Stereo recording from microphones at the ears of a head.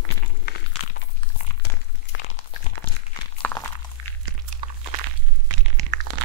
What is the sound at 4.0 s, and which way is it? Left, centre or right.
Walk, right.